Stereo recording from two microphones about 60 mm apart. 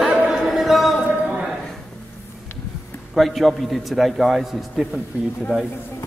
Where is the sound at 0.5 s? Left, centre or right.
Centre.